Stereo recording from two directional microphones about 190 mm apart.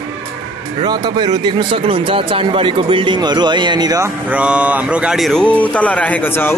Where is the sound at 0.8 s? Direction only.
20° right (ahead or behind).